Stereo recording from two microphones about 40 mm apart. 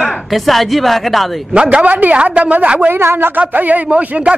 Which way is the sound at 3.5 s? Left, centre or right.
Right.